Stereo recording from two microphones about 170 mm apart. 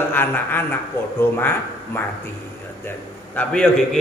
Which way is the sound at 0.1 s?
10° left (ahead or behind).